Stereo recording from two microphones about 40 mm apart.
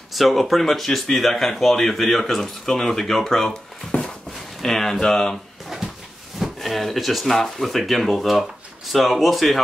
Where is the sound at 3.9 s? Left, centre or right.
Left.